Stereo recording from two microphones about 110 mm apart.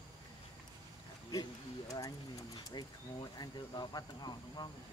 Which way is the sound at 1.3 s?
30° left (ahead or behind).